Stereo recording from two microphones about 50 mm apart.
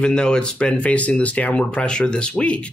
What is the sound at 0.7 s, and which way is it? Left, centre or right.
Speech, left.